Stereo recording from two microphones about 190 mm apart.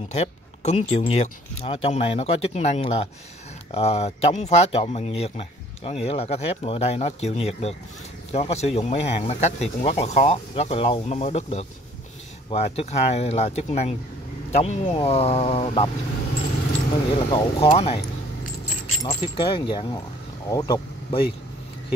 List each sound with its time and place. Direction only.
0.1 s speech: 35° left (ahead or behind)
17.3 s speech: 30° left (ahead or behind)
19.0 s speech: 25° left (ahead or behind)